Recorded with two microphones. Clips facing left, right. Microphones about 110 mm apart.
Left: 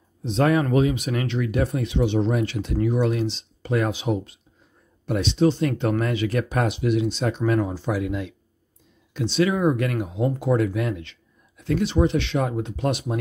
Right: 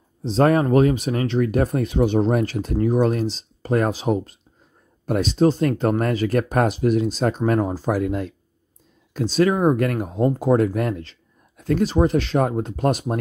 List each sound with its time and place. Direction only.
0.2 s speech: 35° right (ahead or behind)